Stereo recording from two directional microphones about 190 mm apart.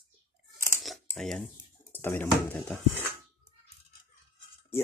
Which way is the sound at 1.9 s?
10° left (ahead or behind).